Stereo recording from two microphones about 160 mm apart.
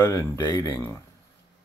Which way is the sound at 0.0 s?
20° left (ahead or behind).